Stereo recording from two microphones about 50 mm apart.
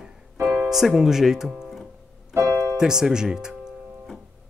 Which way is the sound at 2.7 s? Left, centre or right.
Centre.